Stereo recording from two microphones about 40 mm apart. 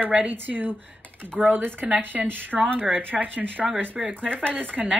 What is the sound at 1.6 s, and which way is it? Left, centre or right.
Speech, right.